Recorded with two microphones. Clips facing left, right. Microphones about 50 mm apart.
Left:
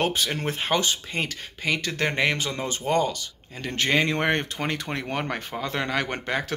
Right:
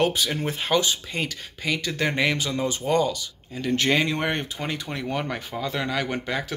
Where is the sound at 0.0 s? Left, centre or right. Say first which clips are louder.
Right 2 dB; left.